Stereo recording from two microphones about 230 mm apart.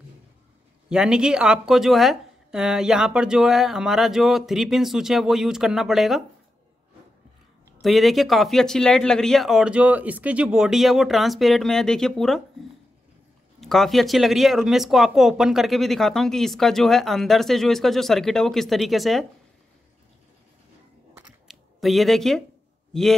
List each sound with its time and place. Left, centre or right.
0.8 s speech: centre
7.8 s speech: centre
13.6 s speech: centre
21.3 s a sound: centre
22.9 s speech: centre